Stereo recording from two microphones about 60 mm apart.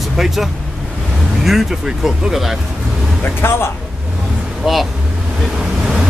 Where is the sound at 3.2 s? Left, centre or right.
Left.